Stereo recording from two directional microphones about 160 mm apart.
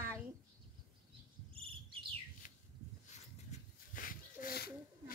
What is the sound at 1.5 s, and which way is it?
Cricket, 35° right (ahead or behind).